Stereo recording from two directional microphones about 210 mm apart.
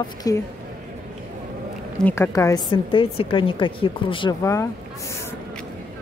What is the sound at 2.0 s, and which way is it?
A woman's voice, 10° left (ahead or behind).